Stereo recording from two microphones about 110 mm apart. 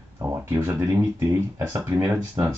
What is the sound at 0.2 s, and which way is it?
Speech, 25° right (ahead or behind).